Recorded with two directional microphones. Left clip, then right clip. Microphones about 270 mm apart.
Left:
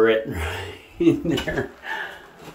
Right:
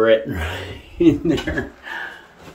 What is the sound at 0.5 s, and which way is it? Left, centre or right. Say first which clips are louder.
Speech: right 4 dB; centre.